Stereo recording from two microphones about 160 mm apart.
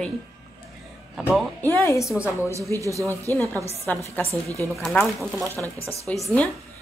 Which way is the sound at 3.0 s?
15° left (ahead or behind).